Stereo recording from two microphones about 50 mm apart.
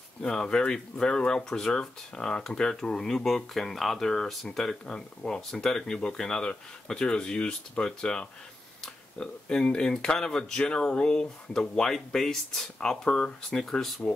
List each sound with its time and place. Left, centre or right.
0.2 s speech: centre
13.0 s speech: centre
13.6 s speech: centre